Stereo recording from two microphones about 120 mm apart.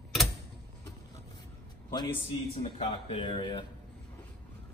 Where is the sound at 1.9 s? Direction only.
40° left (ahead or behind).